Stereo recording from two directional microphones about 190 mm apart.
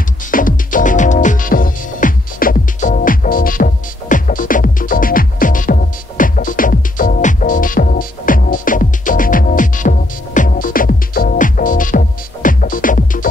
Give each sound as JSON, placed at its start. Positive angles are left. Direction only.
{"t": 0.3, "sound": "music", "side_deg": 45}